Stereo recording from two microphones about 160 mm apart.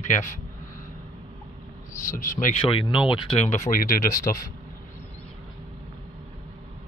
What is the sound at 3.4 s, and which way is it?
Speech, 45° left (ahead or behind).